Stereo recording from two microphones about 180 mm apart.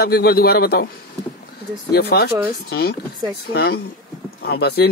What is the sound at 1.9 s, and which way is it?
Speech, 65° left (ahead or behind).